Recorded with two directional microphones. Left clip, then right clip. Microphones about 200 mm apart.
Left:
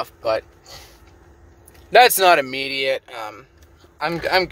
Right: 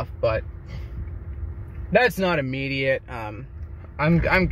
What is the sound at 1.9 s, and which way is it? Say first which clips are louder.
Speech: left 8 dB; 35° left (ahead or behind).